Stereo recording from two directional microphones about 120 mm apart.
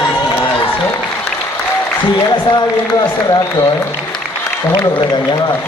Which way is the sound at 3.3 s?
30° left (ahead or behind).